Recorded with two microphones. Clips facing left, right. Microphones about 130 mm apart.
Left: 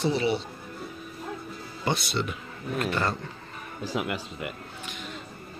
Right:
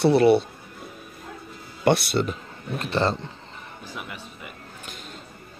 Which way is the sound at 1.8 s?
70° right (ahead or behind).